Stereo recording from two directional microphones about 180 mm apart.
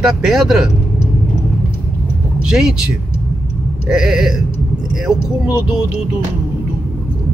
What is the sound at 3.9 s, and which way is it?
Speech, centre (ahead or behind).